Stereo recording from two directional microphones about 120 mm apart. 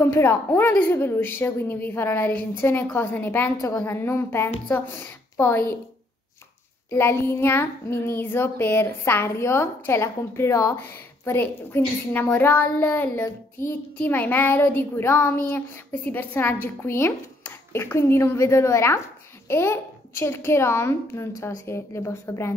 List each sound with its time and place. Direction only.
0.0 s a woman's voice: 20° left (ahead or behind)
3.8 s child singing: 20° left (ahead or behind)
6.9 s child singing: 20° left (ahead or behind)
13.2 s a woman's voice: 20° left (ahead or behind)
16.6 s child singing: 20° left (ahead or behind)